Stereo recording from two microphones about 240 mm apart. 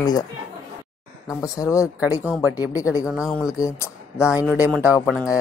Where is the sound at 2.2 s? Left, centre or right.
Centre.